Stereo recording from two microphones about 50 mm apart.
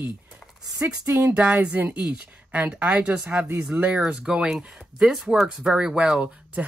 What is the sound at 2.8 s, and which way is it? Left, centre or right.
Speech, right.